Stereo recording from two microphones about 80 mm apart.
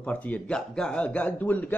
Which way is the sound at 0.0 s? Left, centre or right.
Centre.